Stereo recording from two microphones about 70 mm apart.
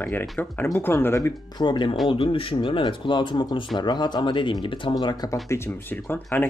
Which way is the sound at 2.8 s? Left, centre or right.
Left.